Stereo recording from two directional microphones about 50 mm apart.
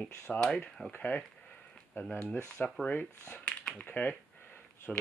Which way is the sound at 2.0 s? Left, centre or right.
Left.